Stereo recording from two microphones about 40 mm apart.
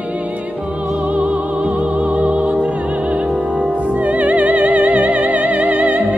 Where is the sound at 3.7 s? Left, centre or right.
Right.